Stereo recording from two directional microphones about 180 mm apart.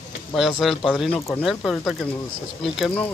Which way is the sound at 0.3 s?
Centre (ahead or behind).